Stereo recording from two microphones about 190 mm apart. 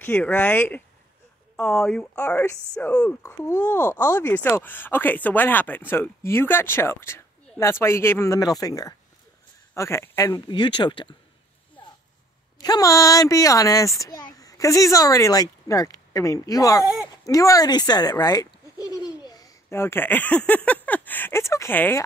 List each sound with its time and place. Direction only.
0.0 s speech: 10° left (ahead or behind); by 11.1 s 25° left (ahead or behind)
12.5 s speech: 20° left (ahead or behind)